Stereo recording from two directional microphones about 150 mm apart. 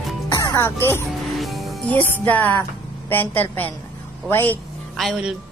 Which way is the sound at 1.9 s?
15° left (ahead or behind).